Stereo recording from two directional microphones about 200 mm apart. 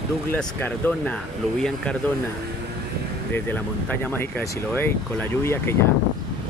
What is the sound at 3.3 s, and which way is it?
Speech, 10° left (ahead or behind).